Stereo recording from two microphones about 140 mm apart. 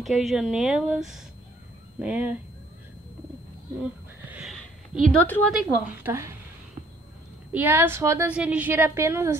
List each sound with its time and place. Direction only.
0.0 s a woman's voice: centre (ahead or behind)
3.8 s a sound: 5° right (ahead or behind)
5.0 s a woman's voice: 10° left (ahead or behind)
5.5 s speech: 5° right (ahead or behind)
7.5 s a woman's voice: 15° right (ahead or behind)